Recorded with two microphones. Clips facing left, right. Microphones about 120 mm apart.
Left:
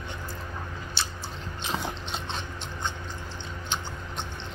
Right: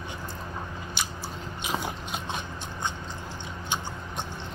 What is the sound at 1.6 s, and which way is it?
Biting, 10° right (ahead or behind).